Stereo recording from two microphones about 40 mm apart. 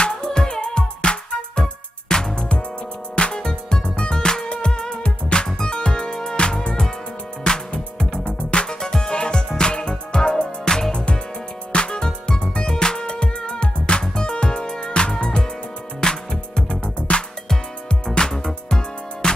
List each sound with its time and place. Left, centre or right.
0.0 s music: centre
8.4 s music: left
8.6 s music: centre